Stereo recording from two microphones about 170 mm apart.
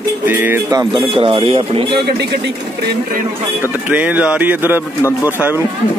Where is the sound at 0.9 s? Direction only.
30° right (ahead or behind).